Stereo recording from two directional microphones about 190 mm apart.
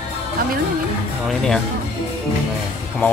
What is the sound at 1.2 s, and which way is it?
Speech, centre (ahead or behind).